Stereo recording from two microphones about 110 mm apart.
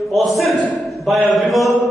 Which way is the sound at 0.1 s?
Centre (ahead or behind).